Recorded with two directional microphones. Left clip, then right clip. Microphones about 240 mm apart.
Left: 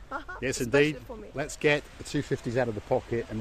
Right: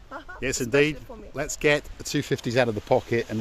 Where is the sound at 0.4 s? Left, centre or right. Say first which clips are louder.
Right 3 dB; centre.